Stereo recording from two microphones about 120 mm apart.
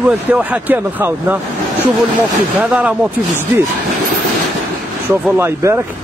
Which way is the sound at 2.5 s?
10° right (ahead or behind).